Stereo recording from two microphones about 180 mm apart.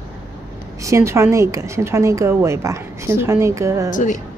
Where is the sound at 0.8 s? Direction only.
15° right (ahead or behind).